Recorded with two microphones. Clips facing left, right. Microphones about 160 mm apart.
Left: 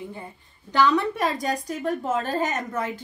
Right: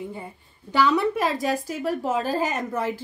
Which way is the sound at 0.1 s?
5° right (ahead or behind).